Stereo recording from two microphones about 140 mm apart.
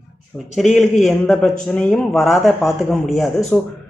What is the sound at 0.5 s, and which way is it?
Speech, centre (ahead or behind).